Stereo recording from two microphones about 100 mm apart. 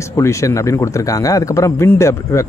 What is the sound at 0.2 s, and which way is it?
Speech, 30° left (ahead or behind).